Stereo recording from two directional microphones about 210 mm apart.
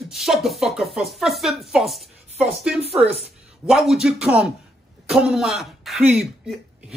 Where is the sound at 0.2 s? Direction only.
Centre (ahead or behind).